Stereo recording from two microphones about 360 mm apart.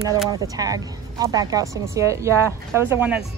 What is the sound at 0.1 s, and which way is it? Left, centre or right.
Speech, centre.